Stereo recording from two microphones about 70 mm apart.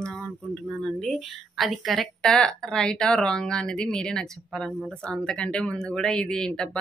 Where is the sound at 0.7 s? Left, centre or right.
Centre.